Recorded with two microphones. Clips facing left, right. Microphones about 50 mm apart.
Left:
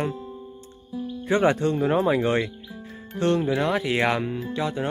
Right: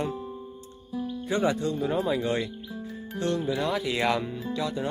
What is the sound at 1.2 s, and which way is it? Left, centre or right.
Speech, left.